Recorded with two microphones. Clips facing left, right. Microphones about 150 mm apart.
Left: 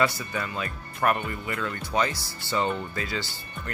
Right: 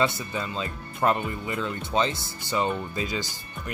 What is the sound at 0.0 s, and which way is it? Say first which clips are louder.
Speech: even; 25° right (ahead or behind).